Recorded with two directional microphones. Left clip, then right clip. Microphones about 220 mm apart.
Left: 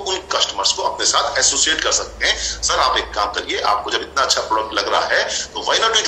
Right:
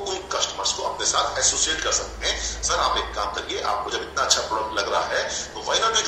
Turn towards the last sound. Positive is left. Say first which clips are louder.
# left 5 dB
turn(degrees=35)  # may be behind; listen again after turning